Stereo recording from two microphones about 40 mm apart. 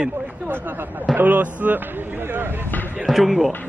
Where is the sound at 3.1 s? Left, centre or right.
Centre.